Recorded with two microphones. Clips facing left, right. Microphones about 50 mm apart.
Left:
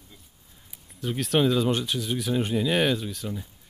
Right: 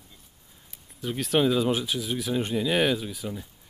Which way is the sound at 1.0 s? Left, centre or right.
Centre.